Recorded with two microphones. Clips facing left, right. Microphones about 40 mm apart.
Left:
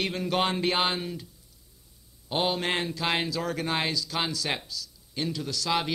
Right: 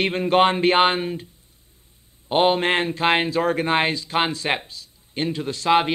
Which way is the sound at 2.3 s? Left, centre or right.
Right.